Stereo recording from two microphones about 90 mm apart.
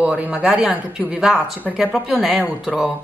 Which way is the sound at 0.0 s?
10° right (ahead or behind).